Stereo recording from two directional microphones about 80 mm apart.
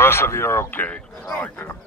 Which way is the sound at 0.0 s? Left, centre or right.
Left.